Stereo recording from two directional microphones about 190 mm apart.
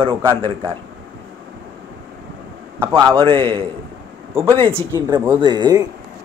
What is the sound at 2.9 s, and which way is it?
Speech, 20° right (ahead or behind).